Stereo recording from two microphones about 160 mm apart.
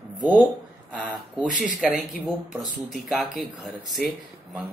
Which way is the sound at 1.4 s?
55° right (ahead or behind).